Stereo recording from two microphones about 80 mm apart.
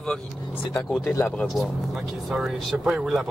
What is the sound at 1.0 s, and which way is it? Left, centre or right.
Speech, left.